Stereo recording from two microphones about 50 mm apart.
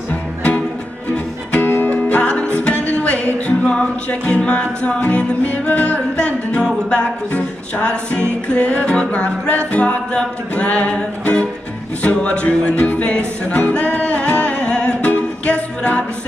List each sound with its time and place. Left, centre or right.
1.1 s music: left
6.1 s music: centre